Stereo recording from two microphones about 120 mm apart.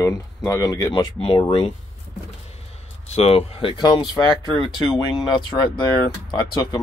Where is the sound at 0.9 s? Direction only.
50° left (ahead or behind).